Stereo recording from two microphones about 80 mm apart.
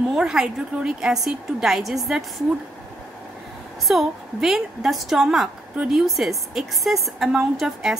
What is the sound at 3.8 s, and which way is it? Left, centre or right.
A woman's voice, centre.